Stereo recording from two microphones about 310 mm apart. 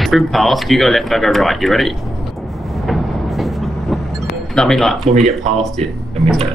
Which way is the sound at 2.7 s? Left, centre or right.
Centre.